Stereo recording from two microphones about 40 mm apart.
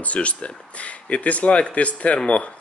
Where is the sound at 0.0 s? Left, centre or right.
Left.